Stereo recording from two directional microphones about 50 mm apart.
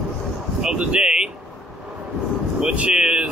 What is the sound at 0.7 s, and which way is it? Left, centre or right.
Speech, right.